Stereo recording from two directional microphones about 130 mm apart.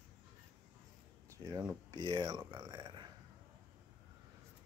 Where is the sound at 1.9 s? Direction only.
30° right (ahead or behind).